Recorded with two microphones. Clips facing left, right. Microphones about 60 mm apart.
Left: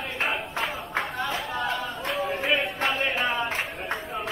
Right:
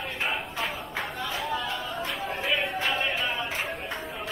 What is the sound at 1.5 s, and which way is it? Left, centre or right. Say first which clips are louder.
Chatter: left 2 dB; left.